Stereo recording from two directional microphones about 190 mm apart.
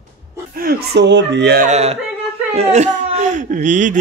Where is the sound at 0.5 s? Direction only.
50° right (ahead or behind).